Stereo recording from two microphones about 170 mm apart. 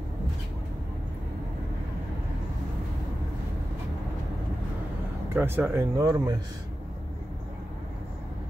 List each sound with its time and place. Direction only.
5.3 s speech: 15° right (ahead or behind)